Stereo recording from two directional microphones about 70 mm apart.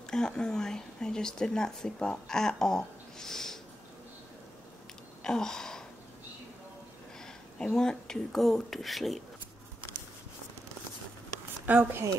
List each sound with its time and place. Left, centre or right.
0.0 s a woman's voice: centre
5.2 s a sound: centre
7.5 s speech: centre
11.6 s speech: centre